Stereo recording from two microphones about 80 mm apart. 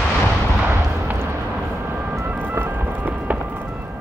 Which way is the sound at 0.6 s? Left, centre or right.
Right.